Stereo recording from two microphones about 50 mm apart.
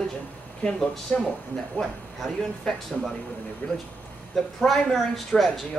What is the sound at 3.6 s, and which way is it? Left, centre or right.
Speech, left.